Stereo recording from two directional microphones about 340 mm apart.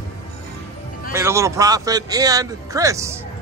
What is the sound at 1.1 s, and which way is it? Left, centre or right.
A man's voice, centre.